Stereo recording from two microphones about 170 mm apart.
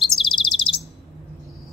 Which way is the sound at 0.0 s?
30° left (ahead or behind).